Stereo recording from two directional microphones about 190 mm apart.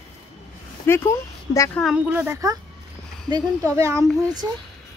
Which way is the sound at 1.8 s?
5° right (ahead or behind).